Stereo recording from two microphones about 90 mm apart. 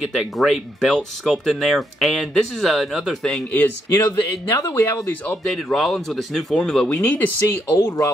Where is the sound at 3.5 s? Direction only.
20° left (ahead or behind).